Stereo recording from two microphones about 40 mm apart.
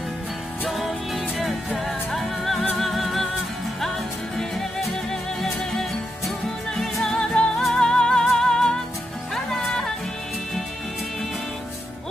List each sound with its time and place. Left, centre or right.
0.7 s music: centre
6.7 s music: centre
7.2 s music: left